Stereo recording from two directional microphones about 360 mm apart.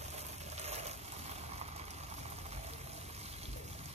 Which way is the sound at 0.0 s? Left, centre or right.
Centre.